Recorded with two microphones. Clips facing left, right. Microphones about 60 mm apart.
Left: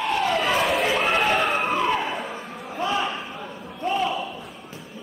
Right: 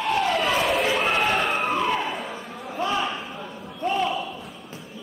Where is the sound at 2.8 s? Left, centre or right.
Centre.